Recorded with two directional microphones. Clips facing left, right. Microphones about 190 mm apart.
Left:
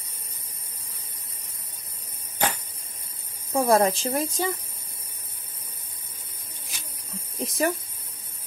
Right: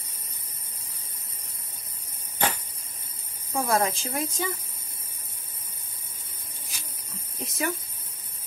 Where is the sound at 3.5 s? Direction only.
35° left (ahead or behind).